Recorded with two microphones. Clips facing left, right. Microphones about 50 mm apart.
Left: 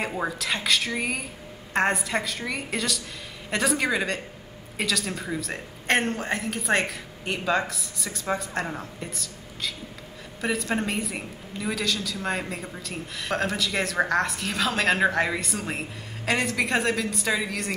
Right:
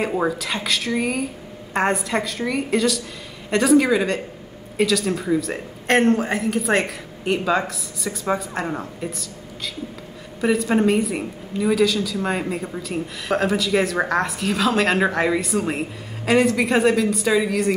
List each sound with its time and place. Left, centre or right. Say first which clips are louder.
0.1 s a woman's voice: right 5 dB; centre
10.4 s a woman's voice: right 8 dB; centre